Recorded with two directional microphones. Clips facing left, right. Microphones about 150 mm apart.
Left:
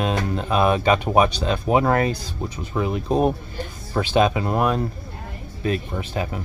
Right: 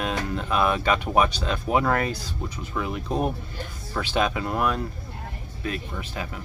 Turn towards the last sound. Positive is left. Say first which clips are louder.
# left 6 dB
turn(degrees=30)  # may be behind; listen again after turning